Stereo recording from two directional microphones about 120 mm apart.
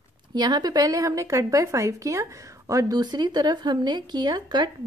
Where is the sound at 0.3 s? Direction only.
35° right (ahead or behind).